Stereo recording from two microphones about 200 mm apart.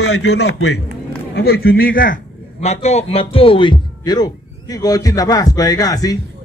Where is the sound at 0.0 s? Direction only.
75° left (ahead or behind).